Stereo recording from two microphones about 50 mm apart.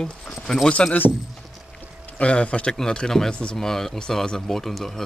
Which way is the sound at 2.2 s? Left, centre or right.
Left.